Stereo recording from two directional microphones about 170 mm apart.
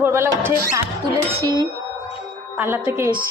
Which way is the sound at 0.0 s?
15° right (ahead or behind).